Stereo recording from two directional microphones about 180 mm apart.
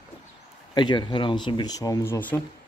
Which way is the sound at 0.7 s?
25° left (ahead or behind).